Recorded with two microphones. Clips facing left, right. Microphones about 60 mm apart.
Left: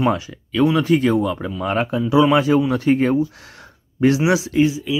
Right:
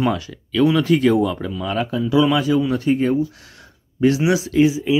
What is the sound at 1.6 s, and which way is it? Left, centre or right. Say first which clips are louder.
Speech: left 3 dB; left.